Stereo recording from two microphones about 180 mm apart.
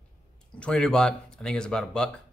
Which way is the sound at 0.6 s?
5° left (ahead or behind).